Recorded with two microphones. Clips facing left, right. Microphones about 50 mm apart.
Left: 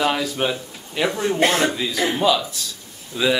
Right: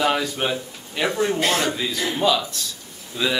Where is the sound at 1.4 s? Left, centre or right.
Left.